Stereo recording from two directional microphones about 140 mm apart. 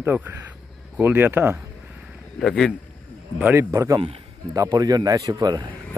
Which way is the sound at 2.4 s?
5° left (ahead or behind).